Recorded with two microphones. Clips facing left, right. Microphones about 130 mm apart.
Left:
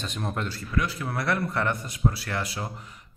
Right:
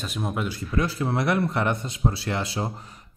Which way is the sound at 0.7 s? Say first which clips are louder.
Right 4 dB; 30° right (ahead or behind).